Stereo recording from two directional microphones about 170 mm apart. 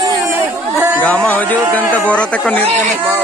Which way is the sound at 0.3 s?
10° right (ahead or behind).